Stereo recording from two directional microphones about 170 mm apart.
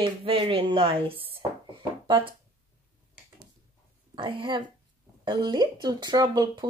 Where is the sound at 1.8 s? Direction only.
25° right (ahead or behind).